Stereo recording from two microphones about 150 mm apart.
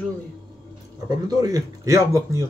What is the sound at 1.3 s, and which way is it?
Speech, 25° right (ahead or behind).